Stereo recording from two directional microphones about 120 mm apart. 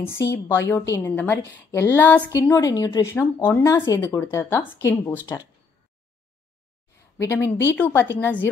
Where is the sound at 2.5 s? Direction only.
30° left (ahead or behind).